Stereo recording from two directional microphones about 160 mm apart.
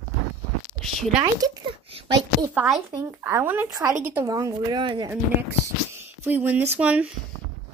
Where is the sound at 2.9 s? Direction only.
15° right (ahead or behind).